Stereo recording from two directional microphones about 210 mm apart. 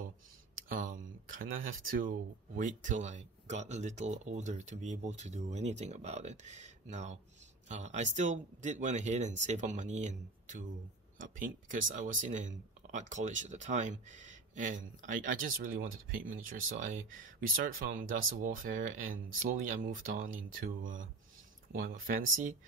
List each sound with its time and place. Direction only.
0.7 s speech: 40° right (ahead or behind)